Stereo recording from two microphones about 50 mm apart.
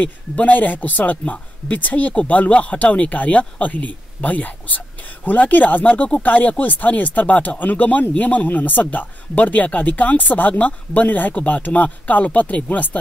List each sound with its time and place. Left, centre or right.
0.0 s speech: left